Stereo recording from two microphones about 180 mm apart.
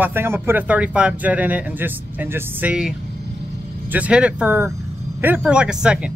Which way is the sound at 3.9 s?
5° right (ahead or behind).